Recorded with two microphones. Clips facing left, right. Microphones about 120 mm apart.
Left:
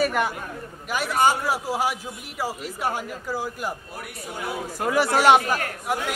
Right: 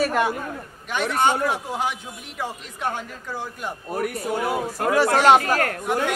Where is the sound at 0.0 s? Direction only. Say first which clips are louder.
Right 2 dB; centre (ahead or behind).